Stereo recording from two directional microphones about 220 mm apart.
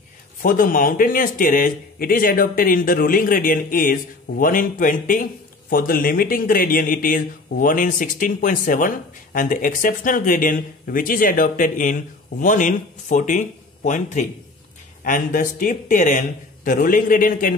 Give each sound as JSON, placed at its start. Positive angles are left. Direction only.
{"t": 0.4, "sound": "speech", "side_deg": 40}